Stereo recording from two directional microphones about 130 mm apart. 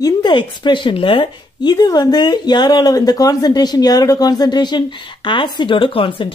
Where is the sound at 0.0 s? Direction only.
35° left (ahead or behind).